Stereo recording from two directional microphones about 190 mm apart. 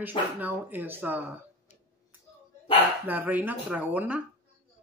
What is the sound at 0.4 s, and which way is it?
Speech, 10° right (ahead or behind).